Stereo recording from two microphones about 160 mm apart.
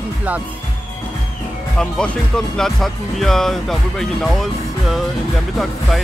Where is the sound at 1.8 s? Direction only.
5° left (ahead or behind).